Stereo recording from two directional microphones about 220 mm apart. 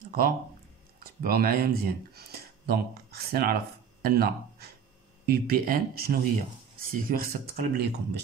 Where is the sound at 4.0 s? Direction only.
45° right (ahead or behind).